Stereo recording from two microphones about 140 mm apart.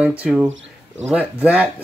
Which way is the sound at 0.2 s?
10° right (ahead or behind).